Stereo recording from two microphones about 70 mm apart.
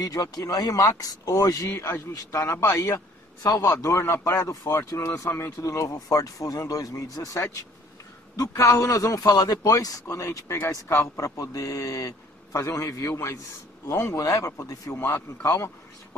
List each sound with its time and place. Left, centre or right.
0.0 s a man's voice: left
1.7 s a man's voice: left
8.6 s a man's voice: left
15.0 s speech: left
15.4 s a man's voice: left